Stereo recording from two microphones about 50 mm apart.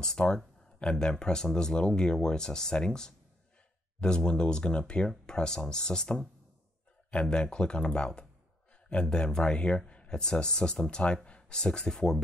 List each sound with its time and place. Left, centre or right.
0.0 s speech: centre